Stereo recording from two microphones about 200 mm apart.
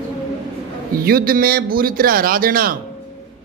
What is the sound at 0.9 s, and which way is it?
A man's voice, 50° right (ahead or behind).